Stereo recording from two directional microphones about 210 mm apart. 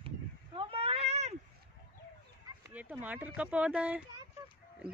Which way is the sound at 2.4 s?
10° right (ahead or behind).